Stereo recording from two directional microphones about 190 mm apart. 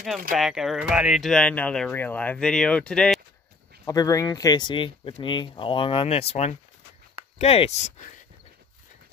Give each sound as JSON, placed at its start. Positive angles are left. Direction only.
{"t": 0.4, "sound": "speech", "side_deg": 0}
{"t": 3.8, "sound": "speech", "side_deg": 20}